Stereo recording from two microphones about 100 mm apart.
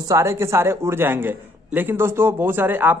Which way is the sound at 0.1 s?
30° right (ahead or behind).